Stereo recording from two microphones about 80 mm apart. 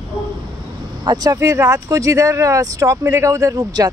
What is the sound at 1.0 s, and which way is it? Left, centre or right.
Speech, right.